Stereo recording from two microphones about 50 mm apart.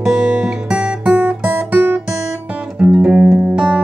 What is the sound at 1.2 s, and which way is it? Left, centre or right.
Guitar, right.